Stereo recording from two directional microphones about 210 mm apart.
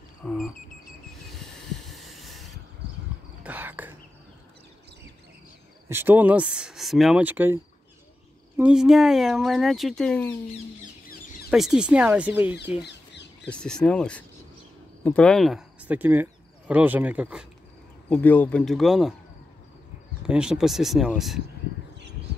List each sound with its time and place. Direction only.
0.2 s a sound: centre (ahead or behind)
3.4 s whispering: 10° right (ahead or behind)
5.9 s speech: 10° right (ahead or behind)
11.5 s speech: centre (ahead or behind)
12.8 s chicken: 55° left (ahead or behind)
13.5 s speech: 5° left (ahead or behind)
18.1 s speech: 10° left (ahead or behind)
20.2 s speech: 5° right (ahead or behind)